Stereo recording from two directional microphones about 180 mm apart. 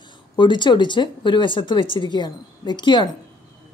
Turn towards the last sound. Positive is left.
turn(degrees=25)  # may be behind; listen again after turning